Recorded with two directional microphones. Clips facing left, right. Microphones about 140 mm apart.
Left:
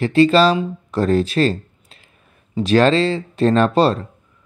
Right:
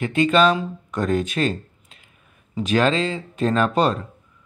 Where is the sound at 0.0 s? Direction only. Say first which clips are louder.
Left 4 dB; 35° left (ahead or behind).